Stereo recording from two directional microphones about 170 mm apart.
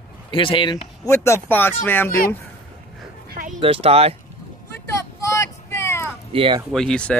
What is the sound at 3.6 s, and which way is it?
Speech, 35° right (ahead or behind).